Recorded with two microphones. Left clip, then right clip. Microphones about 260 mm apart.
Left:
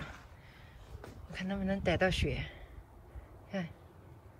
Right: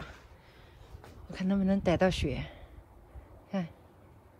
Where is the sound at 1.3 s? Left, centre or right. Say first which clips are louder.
Right 5 dB; centre.